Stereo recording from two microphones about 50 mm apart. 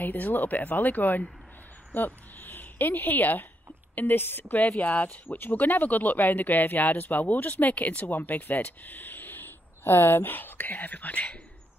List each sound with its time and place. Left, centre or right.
0.0 s a woman's voice: left